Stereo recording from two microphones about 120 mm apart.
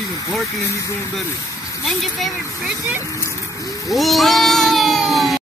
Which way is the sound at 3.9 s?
Centre (ahead or behind).